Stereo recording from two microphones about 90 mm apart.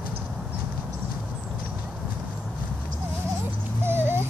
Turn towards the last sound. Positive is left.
turn(degrees=-25)  # may be behind; listen again after turning